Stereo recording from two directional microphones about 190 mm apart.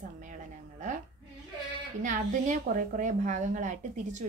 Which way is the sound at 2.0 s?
45° right (ahead or behind).